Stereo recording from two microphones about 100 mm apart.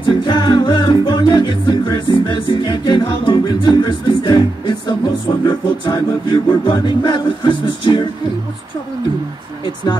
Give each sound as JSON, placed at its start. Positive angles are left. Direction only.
{"t": 0.0, "sound": "music", "side_deg": 55}